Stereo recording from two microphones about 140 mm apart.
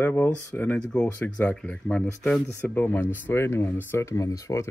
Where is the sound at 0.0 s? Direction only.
15° left (ahead or behind).